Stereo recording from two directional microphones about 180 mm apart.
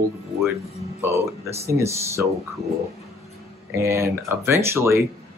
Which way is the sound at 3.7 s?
15° right (ahead or behind).